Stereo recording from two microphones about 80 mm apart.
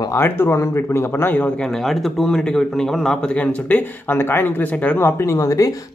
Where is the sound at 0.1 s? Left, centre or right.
Left.